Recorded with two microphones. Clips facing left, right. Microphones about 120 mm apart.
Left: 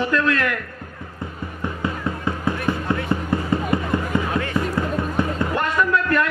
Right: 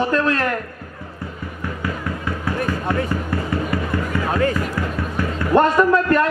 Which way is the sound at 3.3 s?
20° left (ahead or behind).